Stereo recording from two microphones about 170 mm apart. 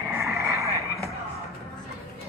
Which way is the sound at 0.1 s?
15° right (ahead or behind).